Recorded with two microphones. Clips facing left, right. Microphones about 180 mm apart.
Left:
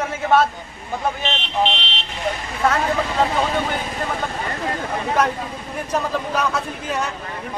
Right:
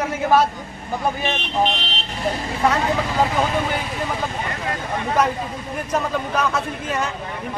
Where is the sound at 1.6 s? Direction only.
40° right (ahead or behind).